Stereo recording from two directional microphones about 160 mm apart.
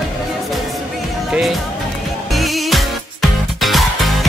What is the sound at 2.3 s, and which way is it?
Music, centre (ahead or behind).